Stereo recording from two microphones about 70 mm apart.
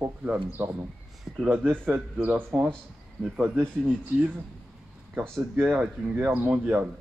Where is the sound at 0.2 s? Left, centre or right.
Right.